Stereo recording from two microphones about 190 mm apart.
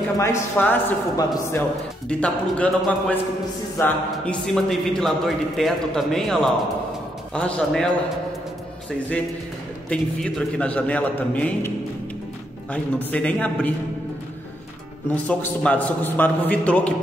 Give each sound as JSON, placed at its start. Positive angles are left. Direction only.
{"t": 0.2, "sound": "a man's voice", "side_deg": 10}
{"t": 9.8, "sound": "a man's voice", "side_deg": 5}
{"t": 12.7, "sound": "a man's voice", "side_deg": 5}
{"t": 15.0, "sound": "a man's voice", "side_deg": 10}